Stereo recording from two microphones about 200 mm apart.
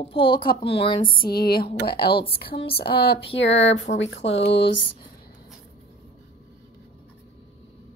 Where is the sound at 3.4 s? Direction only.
70° left (ahead or behind).